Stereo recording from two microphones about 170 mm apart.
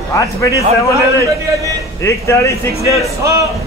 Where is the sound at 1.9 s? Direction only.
15° left (ahead or behind).